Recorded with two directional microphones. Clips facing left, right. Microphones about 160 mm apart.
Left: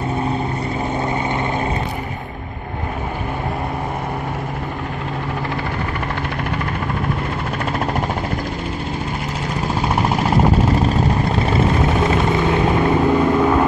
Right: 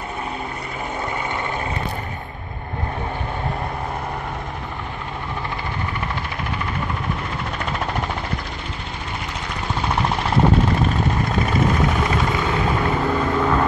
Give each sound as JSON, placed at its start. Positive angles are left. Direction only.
{"t": 12.0, "sound": "vehicle", "side_deg": 25}